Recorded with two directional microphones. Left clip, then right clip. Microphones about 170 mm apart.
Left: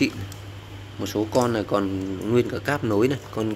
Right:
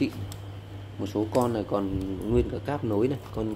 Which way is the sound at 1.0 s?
5° right (ahead or behind).